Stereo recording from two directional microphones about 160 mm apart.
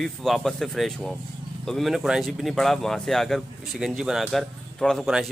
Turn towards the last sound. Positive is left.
turn(degrees=0)  # may be behind; listen again after turning